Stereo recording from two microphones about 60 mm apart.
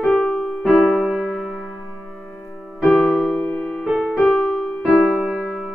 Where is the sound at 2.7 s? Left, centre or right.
Centre.